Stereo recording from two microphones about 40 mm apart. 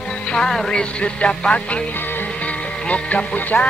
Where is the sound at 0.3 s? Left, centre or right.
Centre.